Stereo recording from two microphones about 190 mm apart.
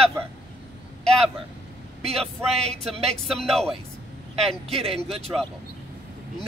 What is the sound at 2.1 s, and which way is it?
Speech, centre (ahead or behind).